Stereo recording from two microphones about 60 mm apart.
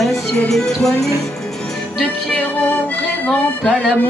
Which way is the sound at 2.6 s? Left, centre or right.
Left.